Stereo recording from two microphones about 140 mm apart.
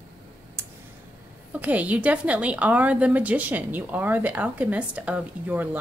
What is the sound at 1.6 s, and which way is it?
Speech, 10° right (ahead or behind).